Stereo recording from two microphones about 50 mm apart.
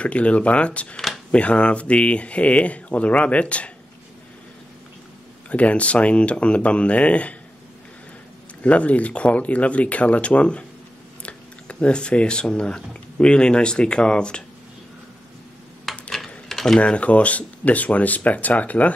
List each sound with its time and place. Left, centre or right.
0.0 s speech: left
0.9 s a sound: centre
1.3 s speech: left
5.5 s speech: left
8.6 s speech: left
15.8 s typing: centre
16.8 s speech: left